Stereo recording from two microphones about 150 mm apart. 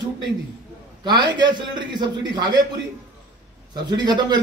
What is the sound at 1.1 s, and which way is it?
A man's voice, 30° right (ahead or behind).